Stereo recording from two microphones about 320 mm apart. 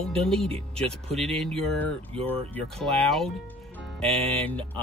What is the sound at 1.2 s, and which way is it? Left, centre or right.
Speech, centre.